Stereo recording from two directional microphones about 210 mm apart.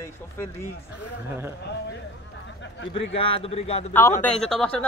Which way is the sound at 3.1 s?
25° left (ahead or behind).